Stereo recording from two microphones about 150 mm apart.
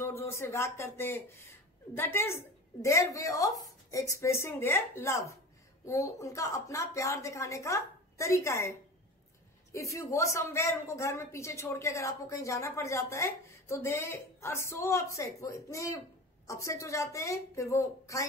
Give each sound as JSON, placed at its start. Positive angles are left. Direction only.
{"t": 0.0, "sound": "speech", "side_deg": 15}